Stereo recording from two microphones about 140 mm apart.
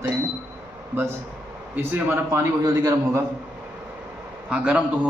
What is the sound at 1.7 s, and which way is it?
A man's voice, 15° right (ahead or behind).